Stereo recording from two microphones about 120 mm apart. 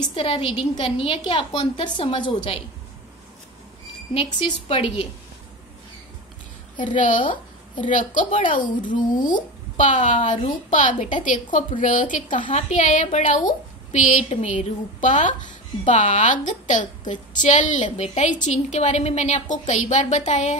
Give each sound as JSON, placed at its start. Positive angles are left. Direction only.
{"t": 0.1, "sound": "a woman's voice", "side_deg": 50}
{"t": 4.1, "sound": "a woman's voice", "side_deg": 50}
{"t": 6.8, "sound": "a woman's voice", "side_deg": 90}